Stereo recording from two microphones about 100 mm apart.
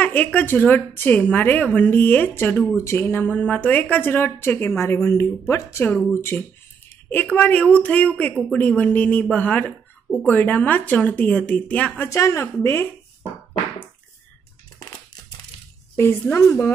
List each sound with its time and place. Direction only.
0.0 s a woman's voice: 15° left (ahead or behind)
5.9 s a woman's voice: 15° left (ahead or behind)
6.1 s a woman's voice: 25° left (ahead or behind)
12.0 s a woman's voice: 30° left (ahead or behind)
16.0 s a woman's voice: 25° left (ahead or behind)
16.4 s speech: 5° left (ahead or behind)